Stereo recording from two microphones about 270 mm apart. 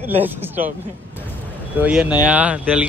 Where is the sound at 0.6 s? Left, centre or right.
Right.